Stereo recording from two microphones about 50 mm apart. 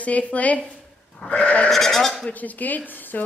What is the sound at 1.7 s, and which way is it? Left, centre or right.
Speech, centre.